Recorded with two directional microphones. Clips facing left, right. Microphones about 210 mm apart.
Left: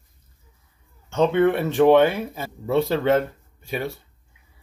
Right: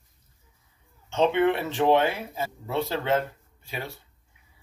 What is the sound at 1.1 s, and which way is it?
Speech, 50° left (ahead or behind).